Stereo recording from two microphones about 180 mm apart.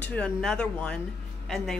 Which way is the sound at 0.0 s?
5° left (ahead or behind).